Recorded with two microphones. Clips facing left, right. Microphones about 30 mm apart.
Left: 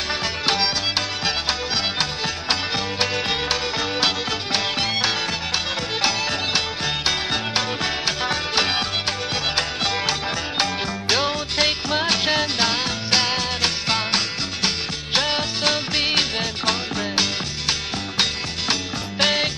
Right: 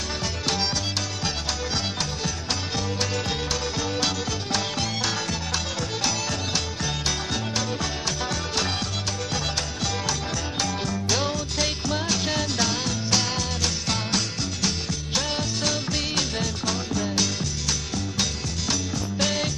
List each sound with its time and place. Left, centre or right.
2.7 s music: left
7.1 s music: left